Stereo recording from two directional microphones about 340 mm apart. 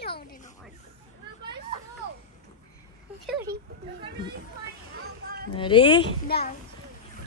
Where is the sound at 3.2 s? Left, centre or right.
Centre.